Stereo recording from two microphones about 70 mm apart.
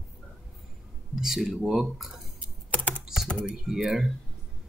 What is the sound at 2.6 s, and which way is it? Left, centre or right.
Typing, left.